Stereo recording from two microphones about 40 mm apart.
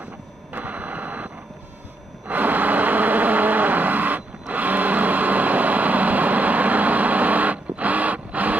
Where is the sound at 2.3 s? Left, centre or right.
Right.